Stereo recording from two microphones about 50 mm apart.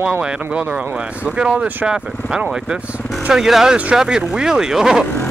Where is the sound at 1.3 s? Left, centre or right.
Right.